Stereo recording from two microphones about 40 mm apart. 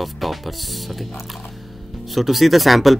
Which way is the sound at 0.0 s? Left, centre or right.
Centre.